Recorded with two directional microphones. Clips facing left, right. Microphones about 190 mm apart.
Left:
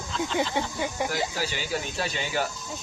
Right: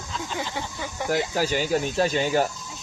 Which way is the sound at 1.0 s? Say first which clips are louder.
Right 9 dB; 45° right (ahead or behind).